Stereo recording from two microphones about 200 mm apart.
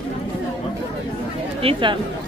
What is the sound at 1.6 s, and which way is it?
Speech, 25° right (ahead or behind).